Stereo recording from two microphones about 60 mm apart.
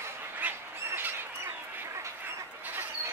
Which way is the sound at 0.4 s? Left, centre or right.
Right.